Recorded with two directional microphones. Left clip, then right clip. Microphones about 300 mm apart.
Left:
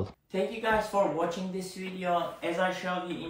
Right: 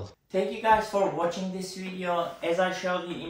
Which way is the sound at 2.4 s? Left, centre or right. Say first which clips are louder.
Right 5 dB; centre.